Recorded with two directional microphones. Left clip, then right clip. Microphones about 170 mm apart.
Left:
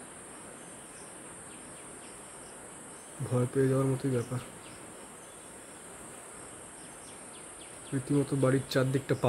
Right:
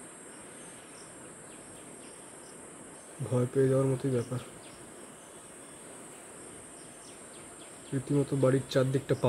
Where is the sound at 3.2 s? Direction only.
Centre (ahead or behind).